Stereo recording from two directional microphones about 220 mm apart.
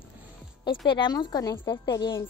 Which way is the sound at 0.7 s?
20° left (ahead or behind).